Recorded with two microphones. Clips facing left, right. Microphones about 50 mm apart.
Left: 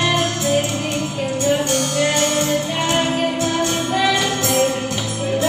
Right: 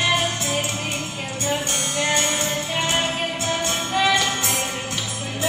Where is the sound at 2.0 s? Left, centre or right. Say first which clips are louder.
Left 2 dB; centre.